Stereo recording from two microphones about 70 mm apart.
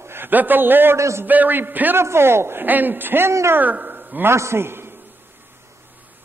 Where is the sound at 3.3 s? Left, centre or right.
Right.